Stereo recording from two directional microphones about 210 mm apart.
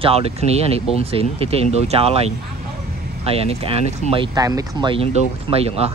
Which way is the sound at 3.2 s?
30° right (ahead or behind).